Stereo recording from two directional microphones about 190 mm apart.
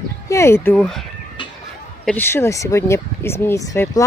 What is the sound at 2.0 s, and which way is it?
Speech, 10° left (ahead or behind).